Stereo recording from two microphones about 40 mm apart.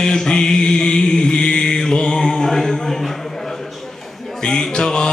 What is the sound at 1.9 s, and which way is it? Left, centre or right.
Music, centre.